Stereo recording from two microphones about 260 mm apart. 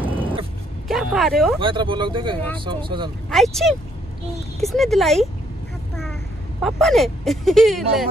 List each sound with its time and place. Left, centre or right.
0.0 s a sound: centre
1.6 s speech: centre
3.3 s speech: centre
6.6 s speech: centre